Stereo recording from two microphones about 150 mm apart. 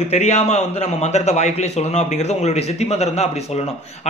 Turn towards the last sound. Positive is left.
turn(degrees=45)  # may be behind; listen again after turning